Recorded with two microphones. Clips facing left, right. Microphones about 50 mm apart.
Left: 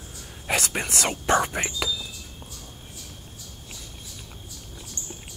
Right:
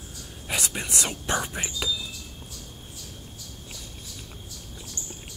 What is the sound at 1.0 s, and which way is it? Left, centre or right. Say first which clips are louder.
Speech: left 8 dB; left.